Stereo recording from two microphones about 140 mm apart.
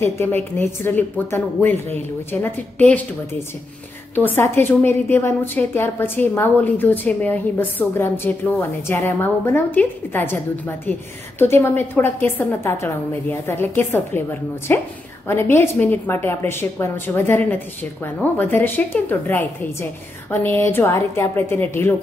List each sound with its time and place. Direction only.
0.0 s a woman's voice: 15° left (ahead or behind)
4.1 s a woman's voice: 15° left (ahead or behind)